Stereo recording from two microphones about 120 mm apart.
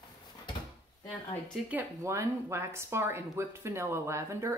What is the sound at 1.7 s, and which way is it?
Speech, 20° right (ahead or behind).